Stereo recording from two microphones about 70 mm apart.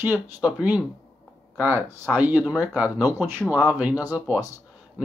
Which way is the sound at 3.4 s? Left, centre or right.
Centre.